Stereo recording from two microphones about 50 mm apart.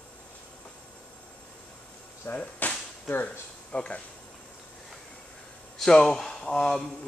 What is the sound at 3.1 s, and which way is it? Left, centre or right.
Speech, left.